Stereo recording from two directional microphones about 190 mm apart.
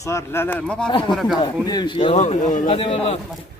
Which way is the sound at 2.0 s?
35° left (ahead or behind).